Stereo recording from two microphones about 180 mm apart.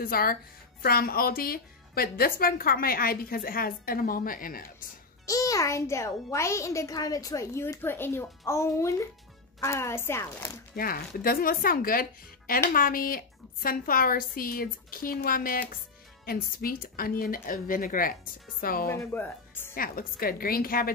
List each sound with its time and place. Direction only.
0.0 s speech: 55° left (ahead or behind)
5.2 s a child's voice: 20° left (ahead or behind)
10.8 s a woman's voice: 55° left (ahead or behind)
18.9 s speech: 10° left (ahead or behind)
19.7 s a woman's voice: 55° left (ahead or behind)